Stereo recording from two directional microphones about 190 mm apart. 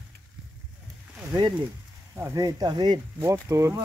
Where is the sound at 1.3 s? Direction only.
20° right (ahead or behind).